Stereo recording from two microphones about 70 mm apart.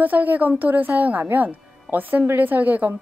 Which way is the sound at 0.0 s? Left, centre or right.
Right.